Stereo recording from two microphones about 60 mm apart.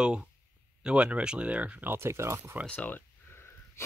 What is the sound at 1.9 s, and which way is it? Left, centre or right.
Speech, right.